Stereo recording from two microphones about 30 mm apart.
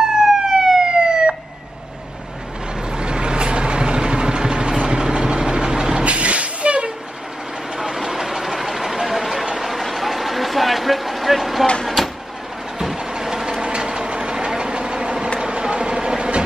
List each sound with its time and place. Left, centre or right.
0.0 s emergency vehicle: centre
1.0 s emergency vehicle: right
2.9 s vehicle: right
6.0 s vehicle: right
7.8 s vehicle: centre
12.9 s vehicle: right
15.4 s train: right